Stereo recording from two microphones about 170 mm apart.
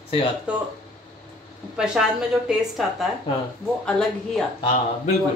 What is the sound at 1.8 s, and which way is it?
A woman's voice, 5° right (ahead or behind).